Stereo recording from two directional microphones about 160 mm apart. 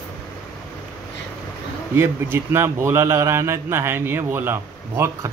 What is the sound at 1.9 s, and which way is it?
A man's voice, 15° right (ahead or behind).